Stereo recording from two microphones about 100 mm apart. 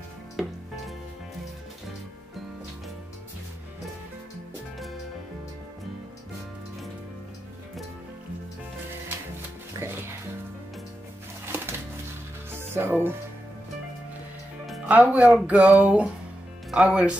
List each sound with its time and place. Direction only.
9.8 s music: 30° right (ahead or behind)
11.4 s music: 20° right (ahead or behind)
14.9 s speech: 15° right (ahead or behind)